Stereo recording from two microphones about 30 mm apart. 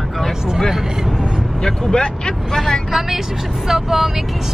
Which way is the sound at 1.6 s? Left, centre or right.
Left.